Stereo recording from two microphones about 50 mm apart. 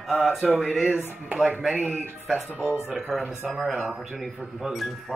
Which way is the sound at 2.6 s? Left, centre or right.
Left.